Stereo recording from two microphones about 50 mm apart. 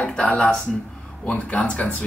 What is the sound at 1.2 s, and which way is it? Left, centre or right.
Speech, left.